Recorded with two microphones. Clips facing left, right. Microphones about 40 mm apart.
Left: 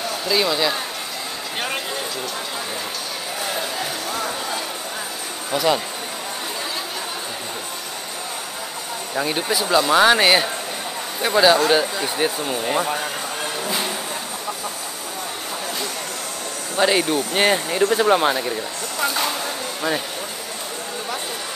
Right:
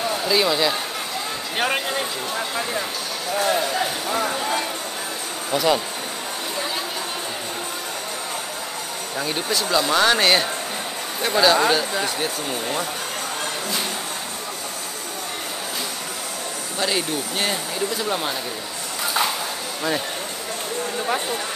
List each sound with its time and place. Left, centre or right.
0.1 s speech: centre
1.6 s speech: centre
3.3 s speech: centre
5.5 s speech: centre
9.1 s speech: centre
16.7 s speech: centre